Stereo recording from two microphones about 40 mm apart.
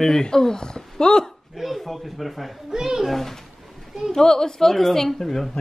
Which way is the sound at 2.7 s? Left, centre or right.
Centre.